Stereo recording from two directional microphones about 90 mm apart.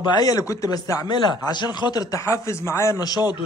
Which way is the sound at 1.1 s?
50° left (ahead or behind).